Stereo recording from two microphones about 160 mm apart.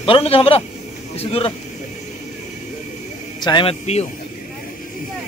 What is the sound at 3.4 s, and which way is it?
Speech, 30° left (ahead or behind).